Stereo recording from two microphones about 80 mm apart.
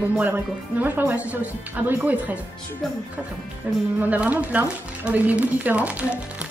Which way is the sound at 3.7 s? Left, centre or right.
Centre.